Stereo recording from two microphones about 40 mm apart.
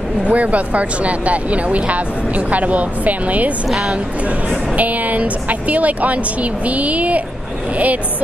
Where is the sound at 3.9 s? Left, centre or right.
Right.